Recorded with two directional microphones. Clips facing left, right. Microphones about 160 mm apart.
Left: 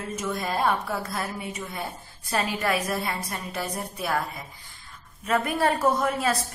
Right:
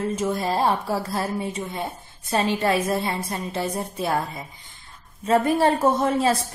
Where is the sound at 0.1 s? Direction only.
30° right (ahead or behind).